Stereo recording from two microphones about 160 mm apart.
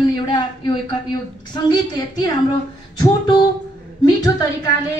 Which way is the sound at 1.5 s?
25° left (ahead or behind).